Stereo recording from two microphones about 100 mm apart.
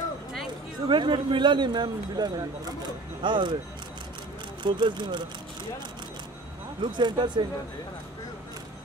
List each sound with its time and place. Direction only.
0.8 s speech: 55° right (ahead or behind)
4.6 s speech: 50° right (ahead or behind)
6.8 s speech: 50° right (ahead or behind)